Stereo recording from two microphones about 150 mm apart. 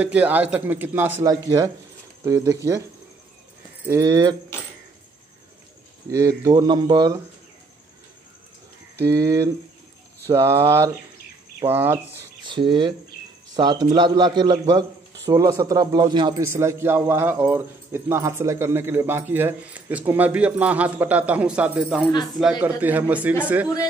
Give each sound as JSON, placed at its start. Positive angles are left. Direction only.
{"t": 0.0, "sound": "a man's voice", "side_deg": -10}
{"t": 2.2, "sound": "a man's voice", "side_deg": -20}
{"t": 3.8, "sound": "a man's voice", "side_deg": -20}
{"t": 6.0, "sound": "a man's voice", "side_deg": -20}
{"t": 9.0, "sound": "a man's voice", "side_deg": -25}
{"t": 12.4, "sound": "a man's voice", "side_deg": -30}
{"t": 16.4, "sound": "a man's voice", "side_deg": -20}